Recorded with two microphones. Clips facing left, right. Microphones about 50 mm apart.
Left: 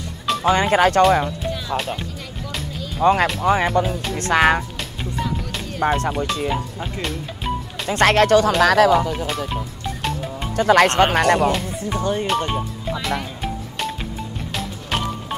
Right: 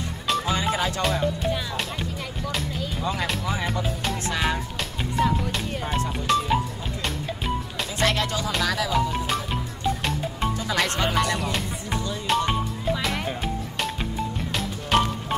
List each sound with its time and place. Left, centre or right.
0.5 s speech: left
3.0 s speech: left
6.1 s speech: centre
7.9 s speech: left
9.1 s speech: centre
10.5 s speech: left
12.3 s music: centre